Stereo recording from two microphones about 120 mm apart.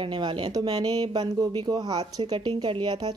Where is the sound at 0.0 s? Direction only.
45° right (ahead or behind).